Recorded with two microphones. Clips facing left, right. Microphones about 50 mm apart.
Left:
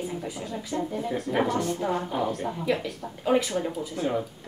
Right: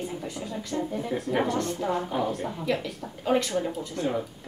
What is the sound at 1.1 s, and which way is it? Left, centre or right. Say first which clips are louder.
Speech: left 1 dB; centre.